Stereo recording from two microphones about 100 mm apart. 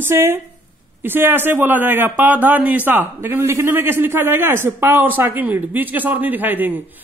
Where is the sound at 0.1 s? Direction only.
25° right (ahead or behind).